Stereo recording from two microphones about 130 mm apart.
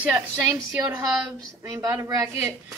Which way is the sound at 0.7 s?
25° right (ahead or behind).